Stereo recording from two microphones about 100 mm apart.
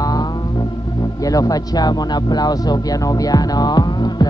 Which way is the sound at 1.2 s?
35° left (ahead or behind).